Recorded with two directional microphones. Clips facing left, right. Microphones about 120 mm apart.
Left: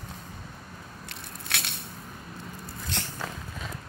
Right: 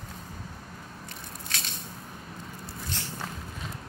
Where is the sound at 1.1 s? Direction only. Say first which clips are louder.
Left 3 dB; 65° left (ahead or behind).